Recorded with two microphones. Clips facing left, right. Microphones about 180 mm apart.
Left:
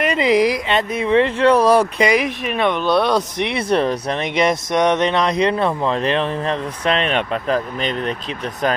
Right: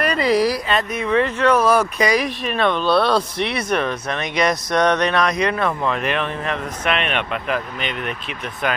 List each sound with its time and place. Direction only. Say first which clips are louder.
0.0 s speech: left 2 dB; 20° left (ahead or behind)
3.7 s speech: left 6 dB; 30° left (ahead or behind)